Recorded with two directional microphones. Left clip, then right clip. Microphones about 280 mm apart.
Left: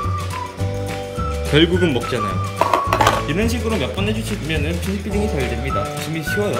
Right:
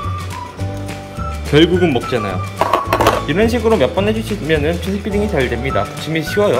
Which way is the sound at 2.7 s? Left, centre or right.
Right.